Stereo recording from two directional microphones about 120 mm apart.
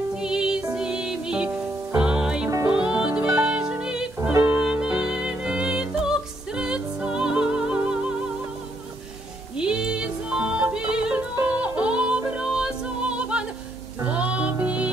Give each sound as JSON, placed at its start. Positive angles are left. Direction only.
{"t": 0.1, "sound": "music", "side_deg": -5}
{"t": 4.3, "sound": "music", "side_deg": -20}
{"t": 4.6, "sound": "music", "side_deg": -10}
{"t": 9.6, "sound": "music", "side_deg": -5}